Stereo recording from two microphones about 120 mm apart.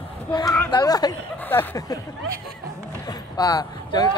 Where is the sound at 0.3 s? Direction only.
35° left (ahead or behind).